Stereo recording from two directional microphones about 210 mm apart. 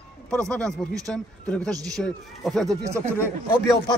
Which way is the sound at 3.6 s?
15° left (ahead or behind).